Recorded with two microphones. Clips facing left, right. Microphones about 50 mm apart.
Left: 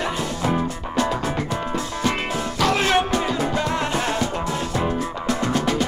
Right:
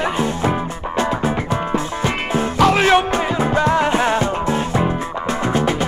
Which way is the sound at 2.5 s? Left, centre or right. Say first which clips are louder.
Right 6 dB; right.